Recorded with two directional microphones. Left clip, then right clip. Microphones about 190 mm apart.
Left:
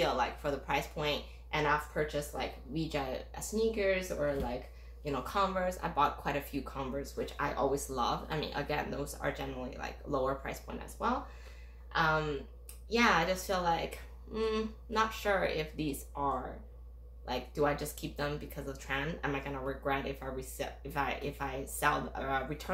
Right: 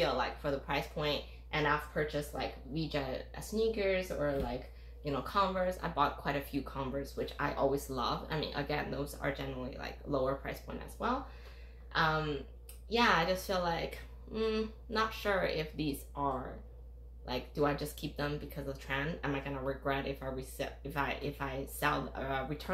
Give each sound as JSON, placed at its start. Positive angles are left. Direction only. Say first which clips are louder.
{"t": 0.0, "sound": "speech", "louder": "left 1 dB", "side_deg": 20}